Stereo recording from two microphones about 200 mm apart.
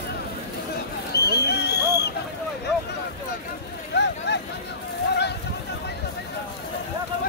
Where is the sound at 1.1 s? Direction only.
55° left (ahead or behind).